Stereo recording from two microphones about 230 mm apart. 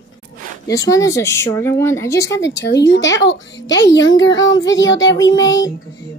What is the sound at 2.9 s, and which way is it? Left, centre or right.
A woman's voice, left.